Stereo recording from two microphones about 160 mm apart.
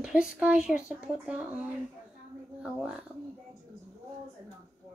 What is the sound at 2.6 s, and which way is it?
Speech, 5° right (ahead or behind).